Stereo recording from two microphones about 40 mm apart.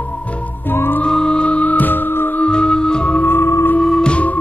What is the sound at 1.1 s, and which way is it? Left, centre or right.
Music, left.